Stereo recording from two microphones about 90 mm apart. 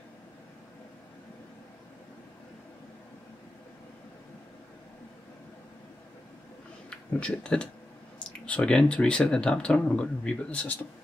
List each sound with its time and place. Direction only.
6.9 s speech: 10° left (ahead or behind)